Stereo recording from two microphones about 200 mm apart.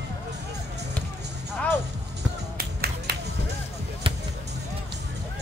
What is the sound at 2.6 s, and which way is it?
Music, 50° right (ahead or behind).